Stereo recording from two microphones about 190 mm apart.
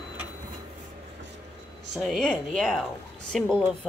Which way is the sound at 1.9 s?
Centre (ahead or behind).